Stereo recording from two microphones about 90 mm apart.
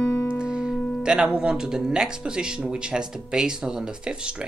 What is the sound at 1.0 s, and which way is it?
Speech, 10° right (ahead or behind).